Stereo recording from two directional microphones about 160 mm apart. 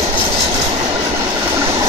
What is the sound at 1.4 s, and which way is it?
Train, 15° right (ahead or behind).